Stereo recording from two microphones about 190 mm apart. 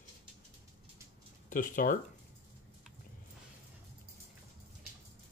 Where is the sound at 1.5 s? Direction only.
45° left (ahead or behind).